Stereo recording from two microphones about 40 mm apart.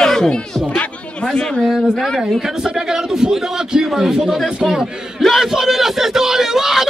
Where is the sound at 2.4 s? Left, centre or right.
Centre.